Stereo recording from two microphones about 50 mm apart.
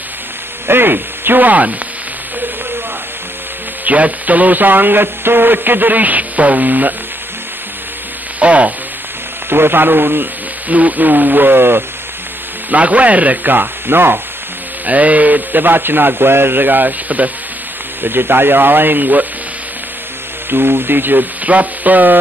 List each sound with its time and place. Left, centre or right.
0.7 s speech: right
3.8 s speech: right
8.4 s sizzle: right
9.5 s speech: right
10.7 s speech: right
12.7 s speech: right
14.9 s speech: right
18.0 s speech: right
20.4 s speech: right